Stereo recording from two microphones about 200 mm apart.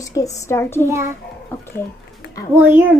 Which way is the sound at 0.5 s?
10° left (ahead or behind).